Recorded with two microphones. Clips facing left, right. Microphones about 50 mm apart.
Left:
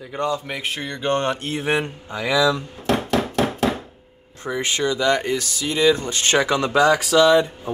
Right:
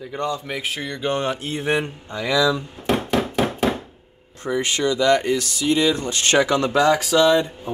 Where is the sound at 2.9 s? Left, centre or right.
Centre.